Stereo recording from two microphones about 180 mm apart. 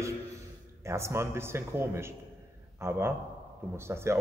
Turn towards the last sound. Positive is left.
turn(degrees=-15)  # may be behind; listen again after turning